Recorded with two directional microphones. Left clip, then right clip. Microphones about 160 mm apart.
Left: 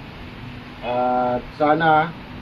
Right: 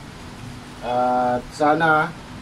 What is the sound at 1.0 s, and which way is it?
Speech, 20° right (ahead or behind).